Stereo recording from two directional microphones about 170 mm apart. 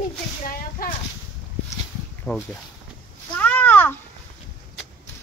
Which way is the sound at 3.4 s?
10° left (ahead or behind).